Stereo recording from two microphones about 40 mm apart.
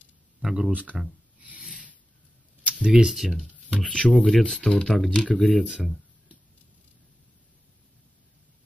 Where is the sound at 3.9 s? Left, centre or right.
Left.